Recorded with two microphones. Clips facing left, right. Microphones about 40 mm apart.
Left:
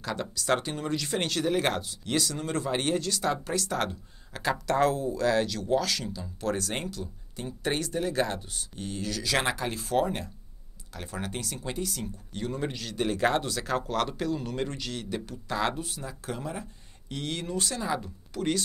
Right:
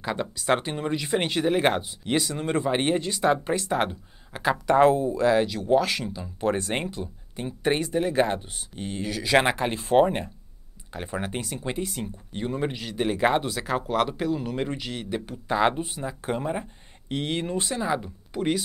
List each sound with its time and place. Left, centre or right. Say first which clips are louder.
0.0 s speech: right 4 dB; right